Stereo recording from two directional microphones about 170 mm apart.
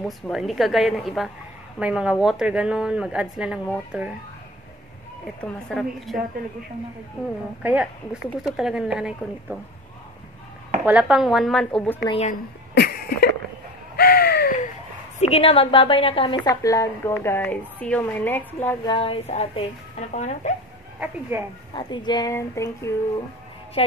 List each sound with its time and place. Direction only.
0.3 s speech: centre (ahead or behind)
5.2 s speech: centre (ahead or behind)
7.6 s speech: 5° right (ahead or behind)
10.9 s speech: 5° right (ahead or behind)
12.7 s cough: 70° left (ahead or behind)
13.9 s a sound: 65° left (ahead or behind)
15.1 s a woman's voice: 40° left (ahead or behind); by 18.8 s 10° left (ahead or behind)
18.9 s speech: 30° left (ahead or behind)
21.0 s speech: 15° right (ahead or behind)
21.7 s a woman's voice: 25° left (ahead or behind)
23.8 s speech: 35° left (ahead or behind)